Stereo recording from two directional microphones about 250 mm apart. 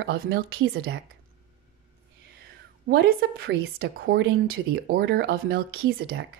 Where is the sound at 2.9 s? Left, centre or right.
Right.